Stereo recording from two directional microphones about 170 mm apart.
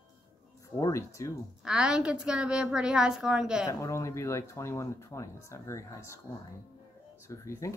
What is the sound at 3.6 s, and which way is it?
Speech, 20° left (ahead or behind).